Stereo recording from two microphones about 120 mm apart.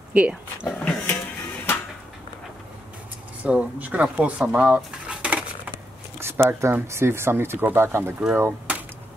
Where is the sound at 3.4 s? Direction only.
10° right (ahead or behind).